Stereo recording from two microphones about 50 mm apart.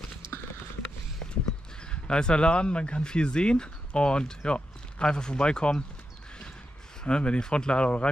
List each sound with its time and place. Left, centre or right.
0.3 s clip-clop: left
1.2 s a sound: centre
1.9 s speech: centre
7.0 s speech: centre